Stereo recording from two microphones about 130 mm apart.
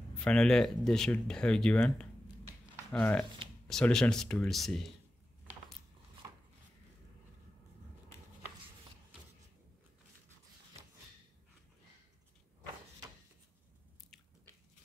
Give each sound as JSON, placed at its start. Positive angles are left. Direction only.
{"t": 0.2, "sound": "speech", "side_deg": 5}